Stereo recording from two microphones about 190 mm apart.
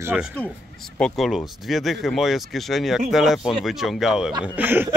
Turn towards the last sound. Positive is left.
turn(degrees=-10)  # may be behind; listen again after turning